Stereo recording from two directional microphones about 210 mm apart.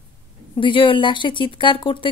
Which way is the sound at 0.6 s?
25° left (ahead or behind).